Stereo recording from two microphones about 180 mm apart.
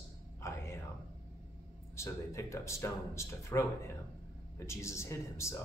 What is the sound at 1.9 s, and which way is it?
A man's voice, 15° left (ahead or behind).